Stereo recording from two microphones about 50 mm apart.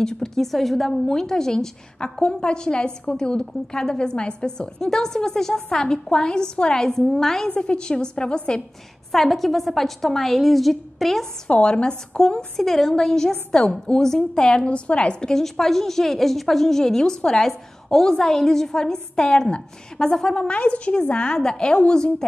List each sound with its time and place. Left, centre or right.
0.0 s a woman's voice: centre
7.4 s a woman's voice: centre
9.1 s a woman's voice: centre
11.4 s a woman's voice: centre